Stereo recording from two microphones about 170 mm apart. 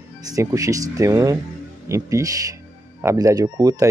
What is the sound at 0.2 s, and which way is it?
Speech, 20° right (ahead or behind).